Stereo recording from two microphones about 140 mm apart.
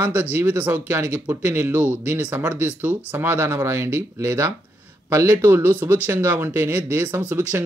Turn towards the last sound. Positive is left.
turn(degrees=-15)  # may be behind; listen again after turning